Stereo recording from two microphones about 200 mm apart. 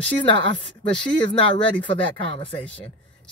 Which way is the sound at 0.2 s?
25° left (ahead or behind).